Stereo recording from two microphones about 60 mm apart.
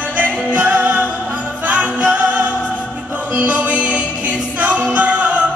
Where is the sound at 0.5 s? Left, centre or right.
Right.